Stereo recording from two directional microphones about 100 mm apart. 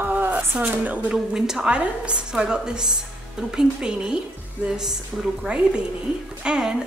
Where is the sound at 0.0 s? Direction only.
20° right (ahead or behind).